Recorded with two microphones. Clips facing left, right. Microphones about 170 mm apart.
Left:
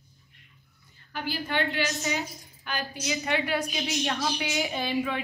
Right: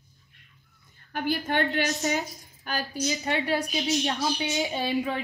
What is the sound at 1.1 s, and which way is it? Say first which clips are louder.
A woman's voice: right 4 dB; 50° right (ahead or behind).